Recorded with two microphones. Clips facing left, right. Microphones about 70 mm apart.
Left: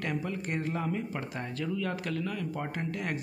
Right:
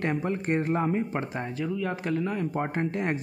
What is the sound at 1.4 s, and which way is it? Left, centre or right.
Speech, centre.